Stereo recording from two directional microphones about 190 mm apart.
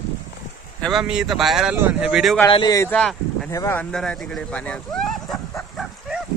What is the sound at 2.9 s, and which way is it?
Speech, 5° left (ahead or behind).